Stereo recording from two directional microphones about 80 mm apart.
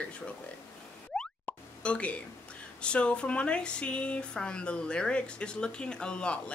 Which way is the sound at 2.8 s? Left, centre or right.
Centre.